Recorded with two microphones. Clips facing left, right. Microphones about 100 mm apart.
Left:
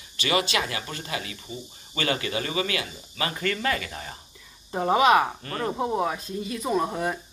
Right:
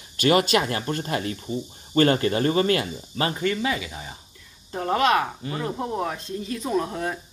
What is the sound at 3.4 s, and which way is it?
Speech, 15° right (ahead or behind).